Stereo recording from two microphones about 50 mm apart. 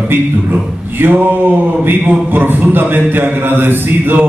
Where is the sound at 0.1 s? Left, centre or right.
Right.